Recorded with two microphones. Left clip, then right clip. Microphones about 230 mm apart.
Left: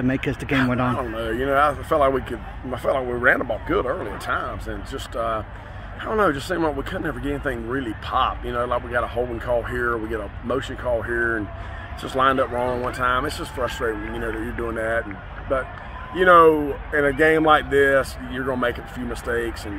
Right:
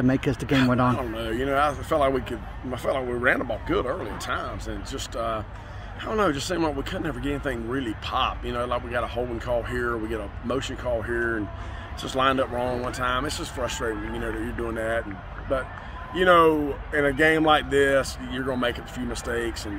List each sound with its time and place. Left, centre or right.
0.0 s speech: right
0.9 s speech: centre
16.2 s speech: centre